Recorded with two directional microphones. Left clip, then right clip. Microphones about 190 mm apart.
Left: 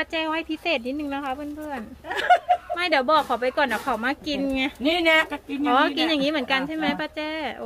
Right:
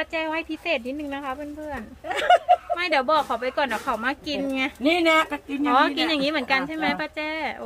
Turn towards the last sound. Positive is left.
turn(degrees=0)  # may be behind; listen again after turning